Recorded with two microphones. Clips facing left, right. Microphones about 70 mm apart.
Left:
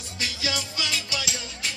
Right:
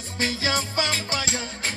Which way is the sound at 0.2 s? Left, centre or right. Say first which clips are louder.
Right 5 dB; right.